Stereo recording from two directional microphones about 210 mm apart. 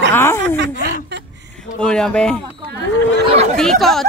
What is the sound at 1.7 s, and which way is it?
Speech, 5° left (ahead or behind).